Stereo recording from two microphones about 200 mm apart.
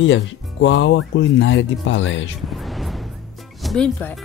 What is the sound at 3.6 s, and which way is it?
Speech, 5° left (ahead or behind).